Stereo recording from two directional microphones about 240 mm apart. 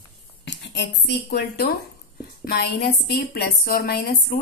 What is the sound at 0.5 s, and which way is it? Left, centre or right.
A woman's voice, left.